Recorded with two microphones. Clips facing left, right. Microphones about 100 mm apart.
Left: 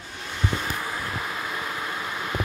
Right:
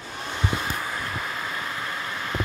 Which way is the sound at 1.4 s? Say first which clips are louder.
Even; 5° left (ahead or behind).